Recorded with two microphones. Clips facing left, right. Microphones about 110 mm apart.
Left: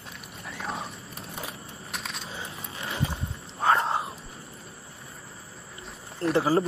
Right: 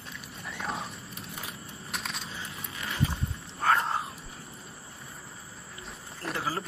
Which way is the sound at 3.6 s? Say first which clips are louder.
Left 3 dB; 10° left (ahead or behind).